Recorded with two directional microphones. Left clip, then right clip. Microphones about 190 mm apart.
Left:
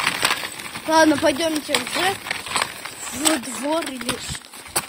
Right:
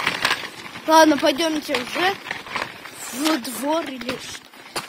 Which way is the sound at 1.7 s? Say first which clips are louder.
Left 2 dB; 60° left (ahead or behind).